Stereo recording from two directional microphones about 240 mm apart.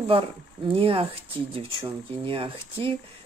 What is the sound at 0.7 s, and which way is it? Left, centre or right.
Speech, right.